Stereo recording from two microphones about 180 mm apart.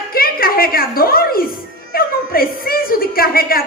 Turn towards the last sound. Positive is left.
turn(degrees=55)  # may be behind; listen again after turning